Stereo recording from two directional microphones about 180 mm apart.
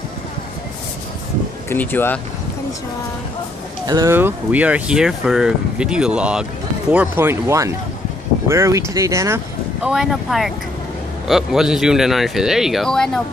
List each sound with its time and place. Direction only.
1.7 s speech: 10° left (ahead or behind)
3.8 s speech: 20° right (ahead or behind)
9.8 s speech: centre (ahead or behind)